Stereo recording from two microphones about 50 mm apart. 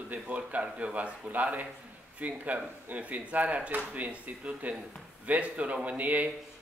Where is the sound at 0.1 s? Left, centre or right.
Right.